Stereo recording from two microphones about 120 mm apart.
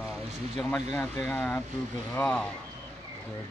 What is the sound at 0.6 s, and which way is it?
Speech, 15° left (ahead or behind).